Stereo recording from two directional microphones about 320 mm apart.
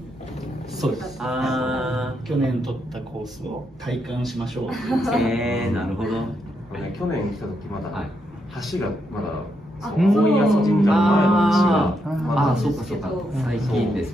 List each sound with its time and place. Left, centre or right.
0.7 s speech: centre
9.9 s speech: centre